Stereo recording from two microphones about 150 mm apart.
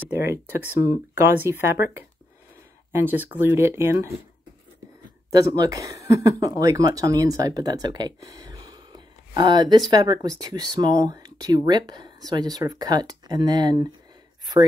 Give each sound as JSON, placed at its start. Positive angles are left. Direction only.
{"t": 0.0, "sound": "speech", "side_deg": -15}
{"t": 2.9, "sound": "speech", "side_deg": -15}
{"t": 5.3, "sound": "speech", "side_deg": -25}